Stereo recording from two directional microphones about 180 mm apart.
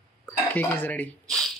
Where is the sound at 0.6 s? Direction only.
10° left (ahead or behind).